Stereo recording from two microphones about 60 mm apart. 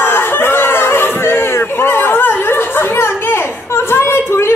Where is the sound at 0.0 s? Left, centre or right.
Left.